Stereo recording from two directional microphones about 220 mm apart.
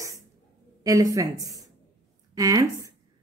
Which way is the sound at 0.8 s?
15° right (ahead or behind).